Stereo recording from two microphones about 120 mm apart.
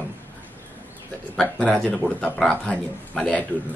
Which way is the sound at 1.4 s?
10° left (ahead or behind).